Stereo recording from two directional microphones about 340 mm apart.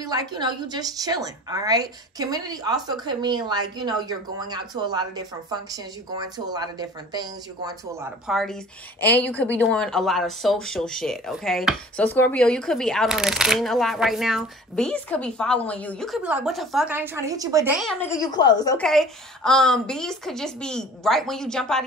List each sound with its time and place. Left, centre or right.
0.0 s a woman's voice: centre